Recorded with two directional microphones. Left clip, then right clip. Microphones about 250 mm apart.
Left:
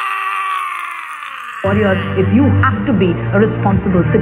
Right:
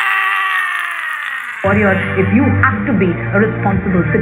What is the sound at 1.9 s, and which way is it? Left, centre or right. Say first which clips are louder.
Speech: right 1 dB; left.